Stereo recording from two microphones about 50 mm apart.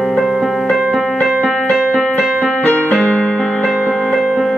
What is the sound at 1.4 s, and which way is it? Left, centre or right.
Keyboard, centre.